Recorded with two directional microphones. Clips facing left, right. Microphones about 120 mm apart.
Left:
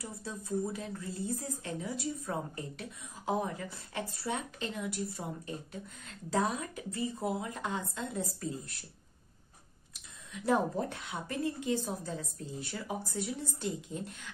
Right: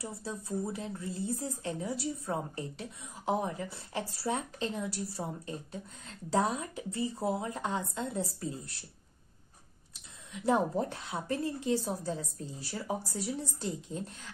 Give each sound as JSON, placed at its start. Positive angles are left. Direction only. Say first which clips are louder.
{"t": 0.0, "sound": "speech", "louder": "right 2 dB", "side_deg": -30}
{"t": 10.3, "sound": "a woman's voice", "louder": "right 1 dB", "side_deg": -25}